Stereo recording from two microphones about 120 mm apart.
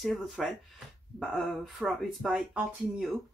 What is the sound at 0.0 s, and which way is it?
Speech, centre (ahead or behind).